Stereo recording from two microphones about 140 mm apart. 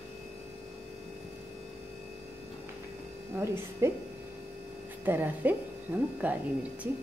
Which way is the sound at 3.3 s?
20° right (ahead or behind).